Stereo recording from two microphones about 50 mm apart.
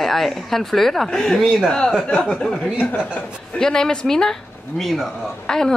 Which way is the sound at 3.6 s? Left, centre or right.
Centre.